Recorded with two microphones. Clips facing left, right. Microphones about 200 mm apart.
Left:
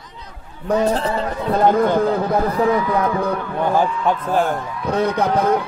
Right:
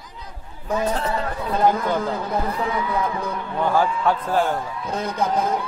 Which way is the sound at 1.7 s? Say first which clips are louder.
Left 7 dB; 55° left (ahead or behind).